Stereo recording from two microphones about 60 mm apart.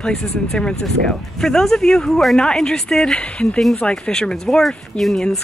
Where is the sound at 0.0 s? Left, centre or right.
Centre.